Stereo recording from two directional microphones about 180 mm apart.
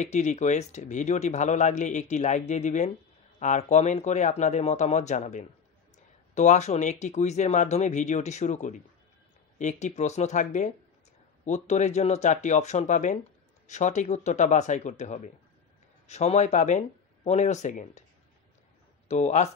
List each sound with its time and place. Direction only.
0.0 s speech: 40° left (ahead or behind)
19.0 s speech: 40° left (ahead or behind)